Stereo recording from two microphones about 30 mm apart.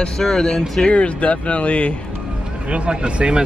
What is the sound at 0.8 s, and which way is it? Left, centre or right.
Speech, left.